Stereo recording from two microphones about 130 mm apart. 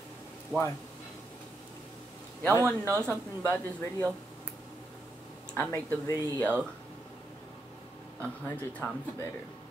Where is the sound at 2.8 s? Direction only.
20° right (ahead or behind).